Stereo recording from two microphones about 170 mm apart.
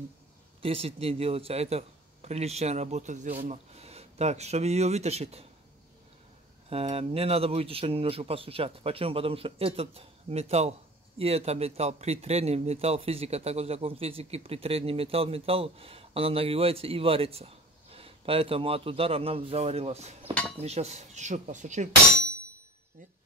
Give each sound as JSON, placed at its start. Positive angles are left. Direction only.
{"t": 0.6, "sound": "speech", "side_deg": -35}
{"t": 6.7, "sound": "speech", "side_deg": -35}